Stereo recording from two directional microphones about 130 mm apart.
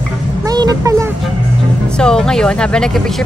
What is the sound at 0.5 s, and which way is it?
Speech, 25° right (ahead or behind).